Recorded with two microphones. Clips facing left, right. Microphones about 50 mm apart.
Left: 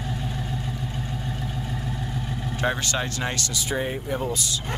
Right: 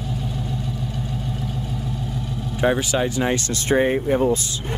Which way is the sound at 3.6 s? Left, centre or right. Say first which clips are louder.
Right 10 dB; right.